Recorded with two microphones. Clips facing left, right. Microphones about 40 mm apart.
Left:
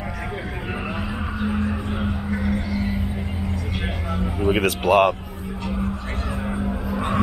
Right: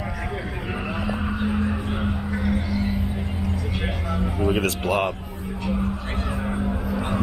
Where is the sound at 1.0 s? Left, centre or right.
Centre.